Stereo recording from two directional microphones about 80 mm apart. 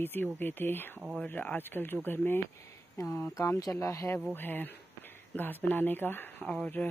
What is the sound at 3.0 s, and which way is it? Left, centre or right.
Speech, left.